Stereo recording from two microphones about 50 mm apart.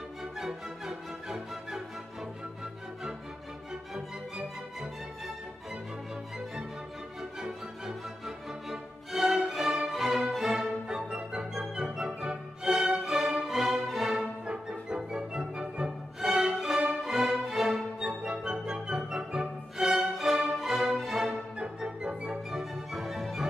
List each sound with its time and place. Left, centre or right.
0.2 s music: centre
7.2 s music: centre
10.9 s music: centre
14.4 s music: centre
17.9 s music: centre
21.7 s organ: centre
22.5 s music: centre